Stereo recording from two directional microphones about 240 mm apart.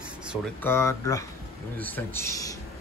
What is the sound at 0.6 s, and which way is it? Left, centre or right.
Speech, centre.